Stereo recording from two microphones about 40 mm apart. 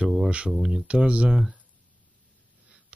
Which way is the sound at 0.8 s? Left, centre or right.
Right.